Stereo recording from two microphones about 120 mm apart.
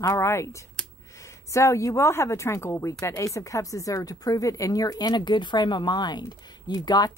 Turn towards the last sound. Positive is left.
turn(degrees=35)  # may be behind; listen again after turning